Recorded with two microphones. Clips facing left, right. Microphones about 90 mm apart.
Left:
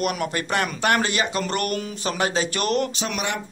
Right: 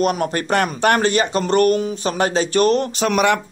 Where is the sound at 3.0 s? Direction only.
55° right (ahead or behind).